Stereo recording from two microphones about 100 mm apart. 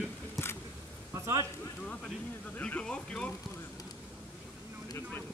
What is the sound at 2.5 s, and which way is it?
Speech, 15° left (ahead or behind).